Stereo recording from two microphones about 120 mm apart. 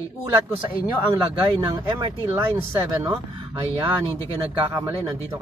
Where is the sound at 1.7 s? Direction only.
45° right (ahead or behind).